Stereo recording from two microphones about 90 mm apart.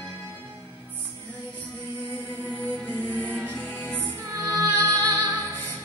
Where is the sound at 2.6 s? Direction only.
20° left (ahead or behind).